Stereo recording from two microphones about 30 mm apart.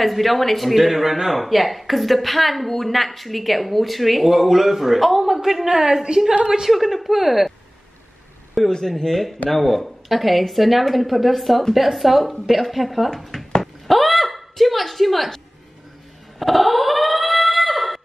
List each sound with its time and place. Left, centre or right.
0.0 s a woman's voice: centre
8.6 s a woman's voice: centre
16.3 s a sound: centre